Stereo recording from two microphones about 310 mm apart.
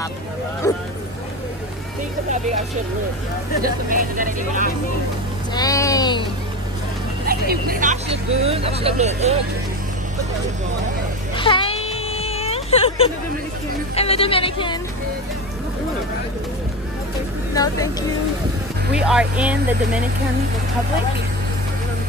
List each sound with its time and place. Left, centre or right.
3.6 s speech: right
5.5 s a sound: centre
7.2 s speech: right
11.3 s baby cry: centre
13.9 s a woman's voice: centre
18.9 s speech: centre